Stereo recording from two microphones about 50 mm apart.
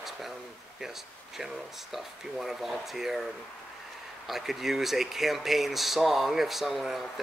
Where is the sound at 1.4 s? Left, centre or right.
Centre.